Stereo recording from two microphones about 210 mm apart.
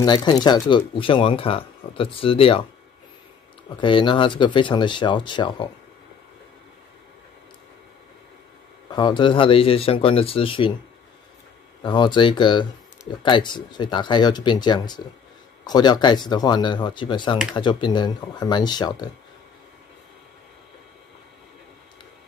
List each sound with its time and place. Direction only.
0.0 s speech: 20° left (ahead or behind)
3.8 s speech: 25° left (ahead or behind)
8.9 s speech: 20° left (ahead or behind)
11.8 s speech: 20° left (ahead or behind)